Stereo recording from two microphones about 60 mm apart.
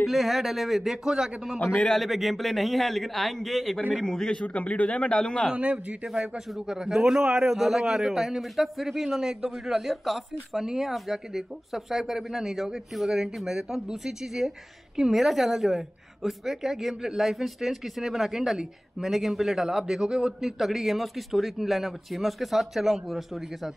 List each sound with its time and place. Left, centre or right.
0.0 s a woman's voice: centre
1.9 s a woman's voice: centre
5.5 s a man's voice: right; by 23.7 s centre